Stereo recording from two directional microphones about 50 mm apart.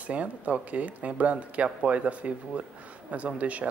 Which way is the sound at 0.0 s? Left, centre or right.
Right.